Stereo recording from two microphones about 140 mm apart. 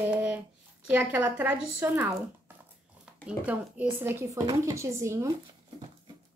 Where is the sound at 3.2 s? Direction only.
10° right (ahead or behind).